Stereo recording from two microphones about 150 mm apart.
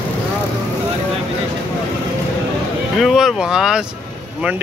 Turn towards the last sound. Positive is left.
turn(degrees=-5)  # may be behind; listen again after turning